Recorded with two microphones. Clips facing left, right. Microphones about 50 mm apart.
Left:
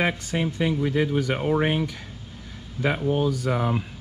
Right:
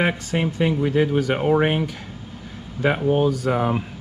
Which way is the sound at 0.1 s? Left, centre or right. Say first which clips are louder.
Right 3 dB; right.